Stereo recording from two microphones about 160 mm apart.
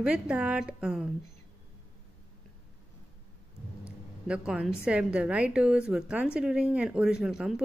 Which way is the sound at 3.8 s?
5° right (ahead or behind).